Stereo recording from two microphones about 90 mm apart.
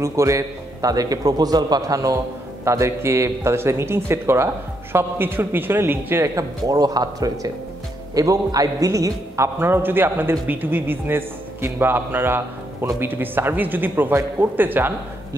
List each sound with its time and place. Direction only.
0.0 s a man's voice: 35° right (ahead or behind)